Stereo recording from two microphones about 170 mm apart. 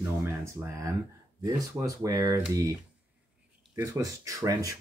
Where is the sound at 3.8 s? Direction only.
20° right (ahead or behind).